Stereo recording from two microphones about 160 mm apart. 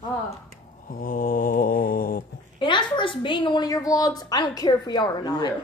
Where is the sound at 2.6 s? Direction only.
30° left (ahead or behind).